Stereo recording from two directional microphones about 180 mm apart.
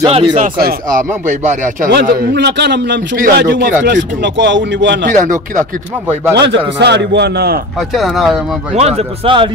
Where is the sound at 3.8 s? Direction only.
80° right.